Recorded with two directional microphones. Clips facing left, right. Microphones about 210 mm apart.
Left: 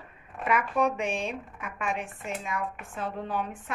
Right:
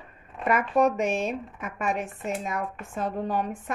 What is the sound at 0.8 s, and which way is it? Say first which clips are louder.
A woman's voice: right 4 dB; 40° right (ahead or behind).